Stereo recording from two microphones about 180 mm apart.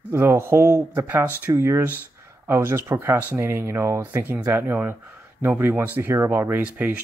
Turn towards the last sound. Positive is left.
turn(degrees=-10)  # may be behind; listen again after turning